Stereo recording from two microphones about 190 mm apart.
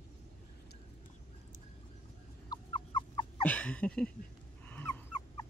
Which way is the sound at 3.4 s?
5° left (ahead or behind).